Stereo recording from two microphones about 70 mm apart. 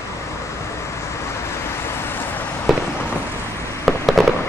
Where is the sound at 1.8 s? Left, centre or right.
Left.